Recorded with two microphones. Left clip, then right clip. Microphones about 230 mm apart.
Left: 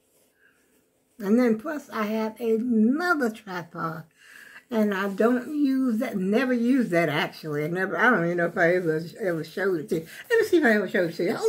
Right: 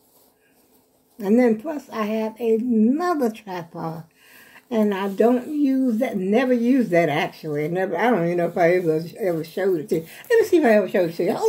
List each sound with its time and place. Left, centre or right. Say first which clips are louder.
1.2 s speech: right 4 dB; centre